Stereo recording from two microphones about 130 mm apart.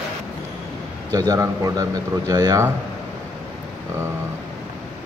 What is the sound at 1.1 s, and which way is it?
Speech, 25° right (ahead or behind).